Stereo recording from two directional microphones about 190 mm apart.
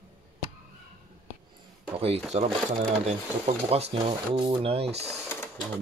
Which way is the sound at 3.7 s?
30° right (ahead or behind).